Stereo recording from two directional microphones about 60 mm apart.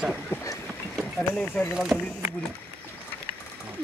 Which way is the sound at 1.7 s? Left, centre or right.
Centre.